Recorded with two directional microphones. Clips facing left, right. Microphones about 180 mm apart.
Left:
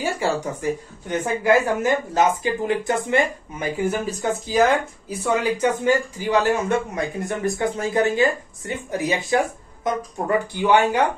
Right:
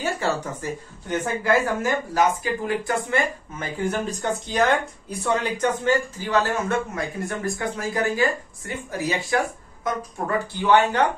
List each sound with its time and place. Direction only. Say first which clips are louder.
0.0 s a woman's voice: left 2 dB; 15° left (ahead or behind)